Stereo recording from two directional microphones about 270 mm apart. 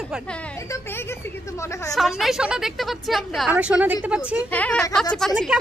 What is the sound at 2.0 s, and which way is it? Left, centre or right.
A woman's voice, centre.